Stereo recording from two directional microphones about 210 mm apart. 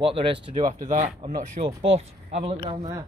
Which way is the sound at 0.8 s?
35° right (ahead or behind).